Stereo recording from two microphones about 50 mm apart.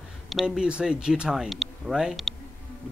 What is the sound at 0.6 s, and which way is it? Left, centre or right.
Speech, centre.